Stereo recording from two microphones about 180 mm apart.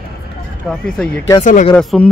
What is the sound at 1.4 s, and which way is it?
Speech, 45° left (ahead or behind).